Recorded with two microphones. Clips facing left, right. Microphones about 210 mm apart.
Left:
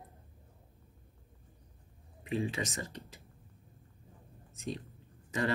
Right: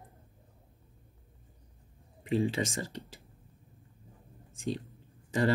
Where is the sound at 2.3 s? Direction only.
30° right (ahead or behind).